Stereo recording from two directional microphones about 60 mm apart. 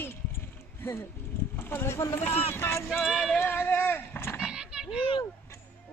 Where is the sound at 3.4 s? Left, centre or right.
Left.